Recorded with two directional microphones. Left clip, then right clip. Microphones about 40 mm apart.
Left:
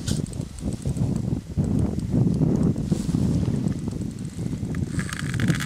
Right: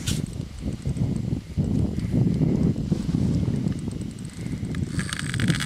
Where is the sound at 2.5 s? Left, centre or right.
Left.